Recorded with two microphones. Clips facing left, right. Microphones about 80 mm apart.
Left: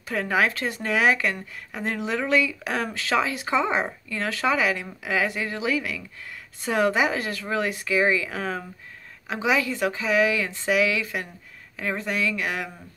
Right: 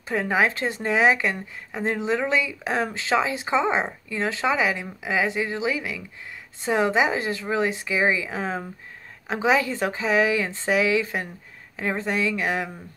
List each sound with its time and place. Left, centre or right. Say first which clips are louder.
0.1 s speech: right 1 dB; right